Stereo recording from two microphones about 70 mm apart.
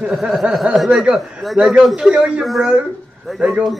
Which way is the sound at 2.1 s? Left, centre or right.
Centre.